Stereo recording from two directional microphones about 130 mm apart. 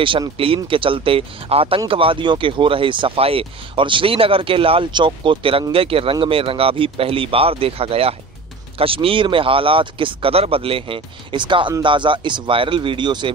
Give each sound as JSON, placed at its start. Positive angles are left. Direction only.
{"t": 0.7, "sound": "speech", "side_deg": -40}